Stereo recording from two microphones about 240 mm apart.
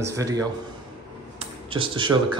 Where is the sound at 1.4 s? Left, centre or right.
Right.